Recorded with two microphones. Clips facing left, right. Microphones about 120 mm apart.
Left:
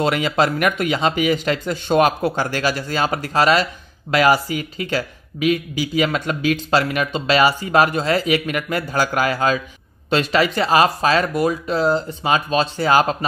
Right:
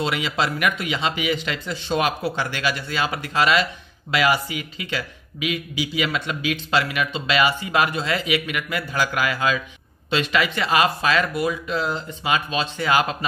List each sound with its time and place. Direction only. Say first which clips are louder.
0.0 s speech: left 6 dB; 45° left (ahead or behind)